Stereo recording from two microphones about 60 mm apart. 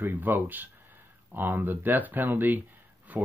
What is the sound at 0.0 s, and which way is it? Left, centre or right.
Speech, right.